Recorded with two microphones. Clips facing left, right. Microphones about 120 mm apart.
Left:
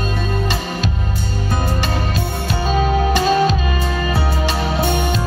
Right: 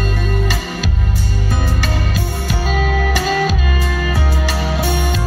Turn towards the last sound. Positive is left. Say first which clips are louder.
# left 3 dB
turn(degrees=20)  # may be behind; listen again after turning